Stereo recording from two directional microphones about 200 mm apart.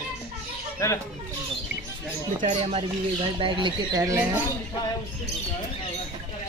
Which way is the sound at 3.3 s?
25° right (ahead or behind).